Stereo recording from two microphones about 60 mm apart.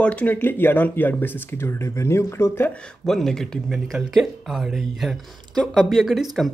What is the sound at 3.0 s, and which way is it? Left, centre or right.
Speech, centre.